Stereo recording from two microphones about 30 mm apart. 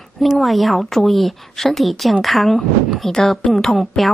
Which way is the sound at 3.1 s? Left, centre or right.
Centre.